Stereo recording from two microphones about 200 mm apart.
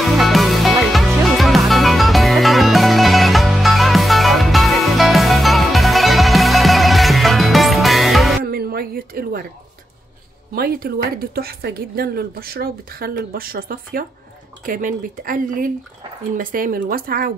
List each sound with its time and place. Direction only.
0.0 s music: centre (ahead or behind)
8.5 s a sound: 50° right (ahead or behind)
10.5 s a woman's voice: 50° right (ahead or behind)